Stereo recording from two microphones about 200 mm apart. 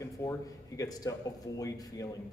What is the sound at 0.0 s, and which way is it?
A man's voice, 15° left (ahead or behind).